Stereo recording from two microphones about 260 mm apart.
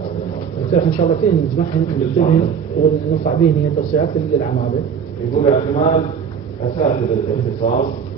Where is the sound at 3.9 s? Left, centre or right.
Left.